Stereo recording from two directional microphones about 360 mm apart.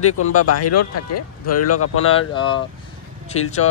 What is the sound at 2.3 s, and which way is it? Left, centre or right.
Speech, centre.